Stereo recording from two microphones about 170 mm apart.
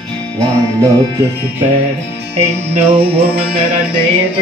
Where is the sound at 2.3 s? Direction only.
40° right (ahead or behind).